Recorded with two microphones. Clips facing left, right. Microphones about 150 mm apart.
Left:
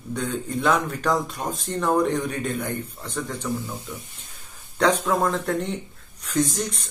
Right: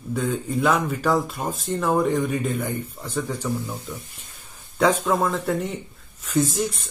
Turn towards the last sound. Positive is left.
turn(degrees=-5)  # may be behind; listen again after turning